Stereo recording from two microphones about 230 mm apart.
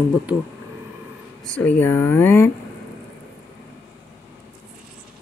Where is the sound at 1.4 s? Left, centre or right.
Centre.